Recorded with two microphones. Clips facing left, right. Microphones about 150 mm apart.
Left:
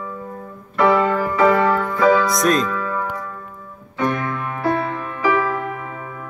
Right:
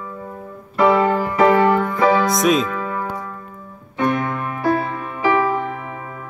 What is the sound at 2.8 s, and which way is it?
Music, 15° right (ahead or behind).